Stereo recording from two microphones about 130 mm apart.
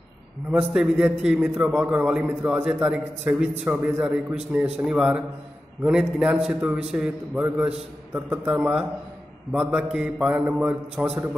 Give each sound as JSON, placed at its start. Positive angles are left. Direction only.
{"t": 0.5, "sound": "a man's voice", "side_deg": -10}